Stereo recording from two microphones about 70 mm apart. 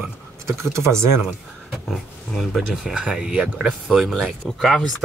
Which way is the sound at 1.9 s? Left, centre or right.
Centre.